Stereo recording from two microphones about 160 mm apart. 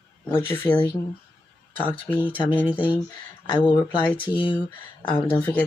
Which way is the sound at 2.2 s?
10° left (ahead or behind).